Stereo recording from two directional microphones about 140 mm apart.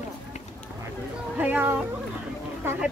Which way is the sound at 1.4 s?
10° right (ahead or behind).